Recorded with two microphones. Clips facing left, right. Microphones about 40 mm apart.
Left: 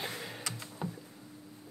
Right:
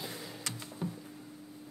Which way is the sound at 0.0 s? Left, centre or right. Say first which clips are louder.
Left 3 dB; left.